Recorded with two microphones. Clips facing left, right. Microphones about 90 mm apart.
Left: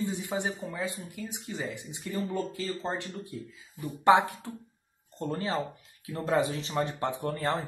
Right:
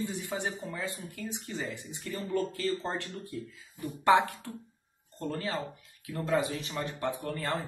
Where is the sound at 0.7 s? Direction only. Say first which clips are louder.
Left 2 dB; 15° left (ahead or behind).